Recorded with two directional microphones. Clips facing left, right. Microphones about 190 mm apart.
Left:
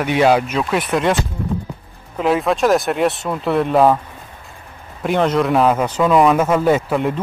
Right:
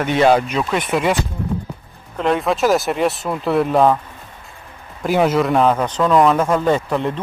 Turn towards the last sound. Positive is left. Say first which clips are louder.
# left 2 dB
turn(degrees=5)  # may be behind; listen again after turning